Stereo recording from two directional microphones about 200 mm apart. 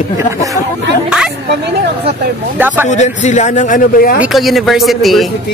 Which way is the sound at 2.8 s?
35° left (ahead or behind).